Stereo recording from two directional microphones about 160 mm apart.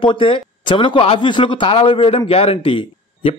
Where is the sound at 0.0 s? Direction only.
30° left (ahead or behind).